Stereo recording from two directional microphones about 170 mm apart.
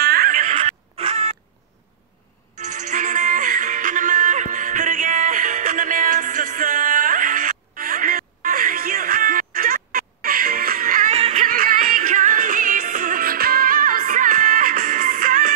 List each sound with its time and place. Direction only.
0.0 s music: 65° right (ahead or behind); by 1.3 s 40° right (ahead or behind)
2.6 s music: 45° right (ahead or behind)
11.4 s music: 55° right (ahead or behind)